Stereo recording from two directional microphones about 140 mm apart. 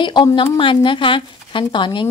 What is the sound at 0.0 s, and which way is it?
Speech, 35° left (ahead or behind).